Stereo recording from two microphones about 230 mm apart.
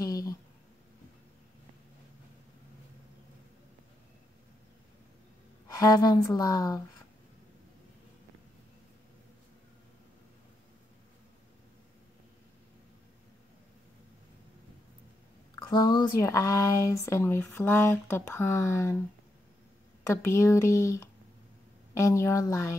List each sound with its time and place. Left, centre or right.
0.0 s a sound: centre
5.8 s speech: centre
15.7 s speech: centre
20.0 s speech: centre